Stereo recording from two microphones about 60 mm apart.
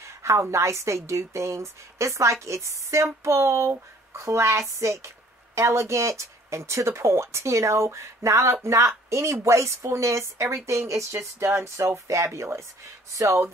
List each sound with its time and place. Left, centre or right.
0.0 s a woman's voice: right
13.1 s a woman's voice: right